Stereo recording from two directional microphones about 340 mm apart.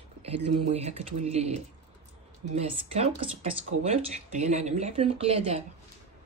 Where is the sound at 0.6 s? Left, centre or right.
Centre.